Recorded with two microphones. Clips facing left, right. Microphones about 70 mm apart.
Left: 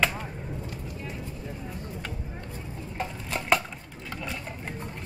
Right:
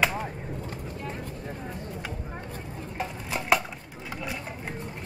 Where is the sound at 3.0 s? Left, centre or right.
Centre.